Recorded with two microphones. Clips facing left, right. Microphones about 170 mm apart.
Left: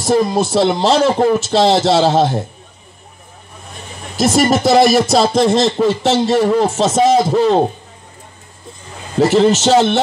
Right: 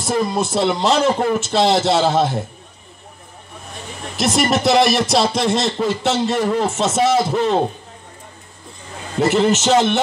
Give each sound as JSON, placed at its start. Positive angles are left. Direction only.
{"t": 0.0, "sound": "speech", "side_deg": 35}
{"t": 4.2, "sound": "speech", "side_deg": 40}
{"t": 9.3, "sound": "speech", "side_deg": 30}